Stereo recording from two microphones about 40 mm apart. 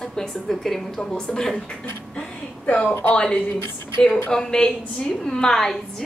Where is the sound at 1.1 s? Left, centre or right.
Centre.